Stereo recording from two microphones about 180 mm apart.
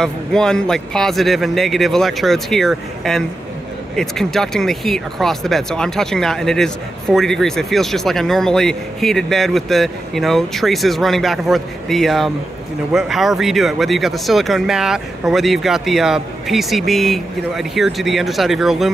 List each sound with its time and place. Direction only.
0.0 s speech: 5° left (ahead or behind)